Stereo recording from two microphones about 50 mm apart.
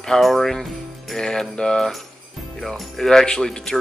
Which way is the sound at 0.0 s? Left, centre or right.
Centre.